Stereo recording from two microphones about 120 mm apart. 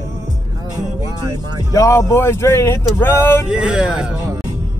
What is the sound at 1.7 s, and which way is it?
Speech, 25° left (ahead or behind).